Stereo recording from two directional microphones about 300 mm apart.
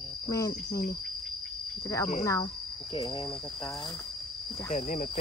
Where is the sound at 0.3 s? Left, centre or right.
Centre.